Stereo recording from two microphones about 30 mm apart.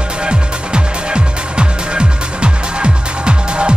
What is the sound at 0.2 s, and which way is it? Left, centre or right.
Music, right.